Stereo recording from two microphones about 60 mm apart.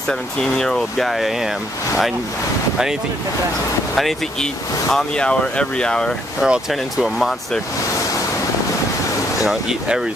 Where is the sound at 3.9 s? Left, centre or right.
Centre.